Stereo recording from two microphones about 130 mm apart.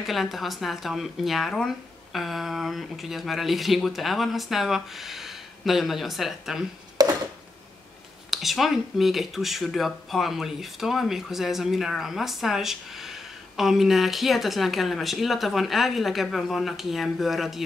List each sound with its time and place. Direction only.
0.0 s speech: centre (ahead or behind)
7.0 s a sound: 30° right (ahead or behind)
8.3 s speech: centre (ahead or behind)